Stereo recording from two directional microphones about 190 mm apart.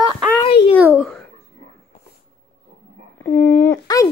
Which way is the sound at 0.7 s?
5° right (ahead or behind).